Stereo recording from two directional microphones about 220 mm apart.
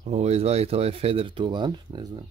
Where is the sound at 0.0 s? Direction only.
30° right (ahead or behind).